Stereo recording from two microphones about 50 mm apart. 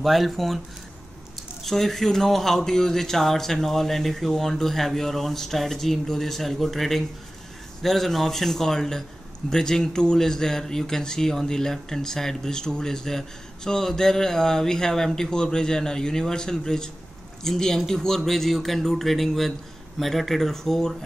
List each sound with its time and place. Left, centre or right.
0.0 s speech: centre
1.6 s speech: centre